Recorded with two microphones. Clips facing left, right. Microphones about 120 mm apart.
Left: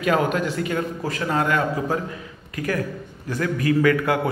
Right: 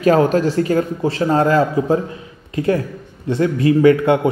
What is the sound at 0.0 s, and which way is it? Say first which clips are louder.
A man's voice: right 7 dB; 35° right (ahead or behind).